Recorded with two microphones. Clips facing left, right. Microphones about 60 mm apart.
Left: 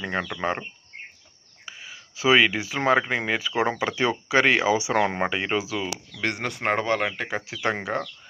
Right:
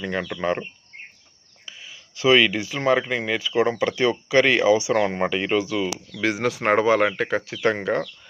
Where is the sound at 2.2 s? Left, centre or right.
Left.